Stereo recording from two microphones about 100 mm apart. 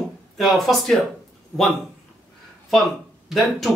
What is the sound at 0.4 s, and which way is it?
Speech, centre (ahead or behind).